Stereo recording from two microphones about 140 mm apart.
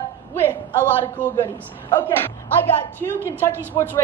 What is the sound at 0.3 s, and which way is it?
A man's voice, 15° left (ahead or behind).